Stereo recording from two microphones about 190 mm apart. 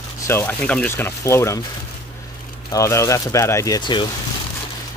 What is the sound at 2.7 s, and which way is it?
Speech, 15° left (ahead or behind).